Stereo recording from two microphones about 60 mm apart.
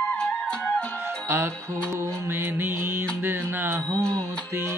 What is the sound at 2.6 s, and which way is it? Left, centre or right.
Music, right.